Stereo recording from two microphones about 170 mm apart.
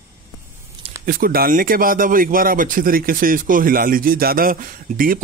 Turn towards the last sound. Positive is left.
turn(degrees=-55)  # may be behind; listen again after turning